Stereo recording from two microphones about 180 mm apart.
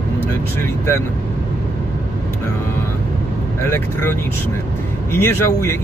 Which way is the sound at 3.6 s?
10° left (ahead or behind).